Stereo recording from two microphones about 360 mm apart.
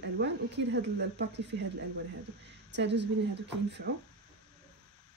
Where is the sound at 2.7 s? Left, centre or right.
Right.